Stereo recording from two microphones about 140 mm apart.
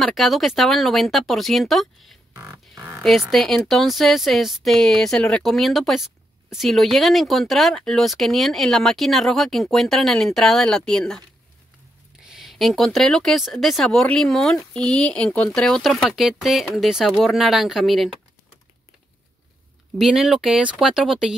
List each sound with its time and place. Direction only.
0.0 s speech: centre (ahead or behind)
20.0 s speech: 5° right (ahead or behind)